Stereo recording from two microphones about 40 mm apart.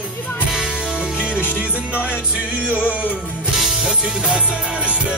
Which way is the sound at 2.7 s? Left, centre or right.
Right.